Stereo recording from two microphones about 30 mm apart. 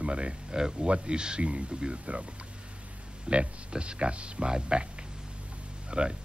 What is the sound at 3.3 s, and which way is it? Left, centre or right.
Speech, right.